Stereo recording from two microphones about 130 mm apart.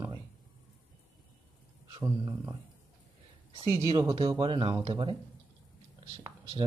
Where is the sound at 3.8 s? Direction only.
25° right (ahead or behind); by 5.2 s 45° right (ahead or behind).